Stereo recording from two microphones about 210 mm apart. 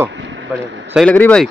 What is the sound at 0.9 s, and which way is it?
Speech, 5° left (ahead or behind).